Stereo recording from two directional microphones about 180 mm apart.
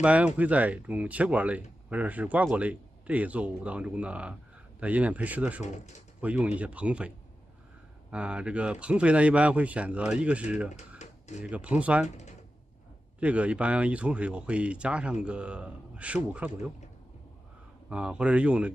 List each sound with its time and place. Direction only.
0.0 s speech: 5° right (ahead or behind)
5.6 s speech: 40° left (ahead or behind)
6.2 s speech: 5° right (ahead or behind)
8.1 s speech: 5° right (ahead or behind)
11.0 s a sound: 40° left (ahead or behind)
11.4 s speech: 5° right (ahead or behind)
13.2 s speech: 5° right (ahead or behind)
17.8 s speech: 5° right (ahead or behind)